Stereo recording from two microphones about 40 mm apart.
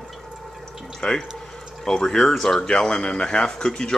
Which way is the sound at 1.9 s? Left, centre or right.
Centre.